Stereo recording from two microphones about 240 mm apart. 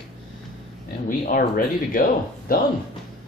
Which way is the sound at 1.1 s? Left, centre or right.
Left.